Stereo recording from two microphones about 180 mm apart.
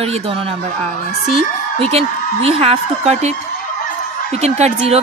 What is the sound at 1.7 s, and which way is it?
A woman's voice, 35° right (ahead or behind).